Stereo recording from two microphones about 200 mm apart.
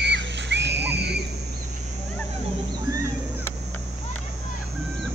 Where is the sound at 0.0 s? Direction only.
60° right (ahead or behind).